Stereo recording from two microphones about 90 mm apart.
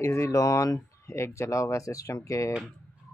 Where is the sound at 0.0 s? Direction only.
35° left (ahead or behind).